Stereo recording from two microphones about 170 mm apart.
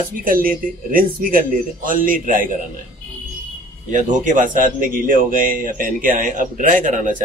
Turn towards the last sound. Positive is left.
turn(degrees=-50)  # may be behind; listen again after turning